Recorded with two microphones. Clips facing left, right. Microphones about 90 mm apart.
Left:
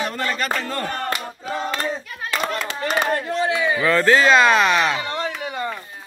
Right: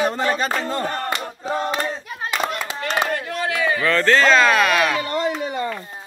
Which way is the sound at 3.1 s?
25° left (ahead or behind).